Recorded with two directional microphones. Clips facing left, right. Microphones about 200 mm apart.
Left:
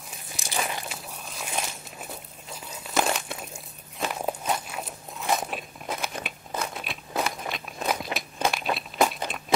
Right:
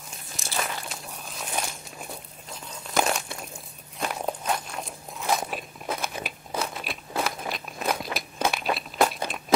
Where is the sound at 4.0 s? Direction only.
5° left (ahead or behind).